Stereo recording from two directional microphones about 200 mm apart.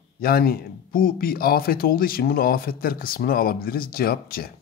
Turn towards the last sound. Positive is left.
turn(degrees=50)  # may be behind; listen again after turning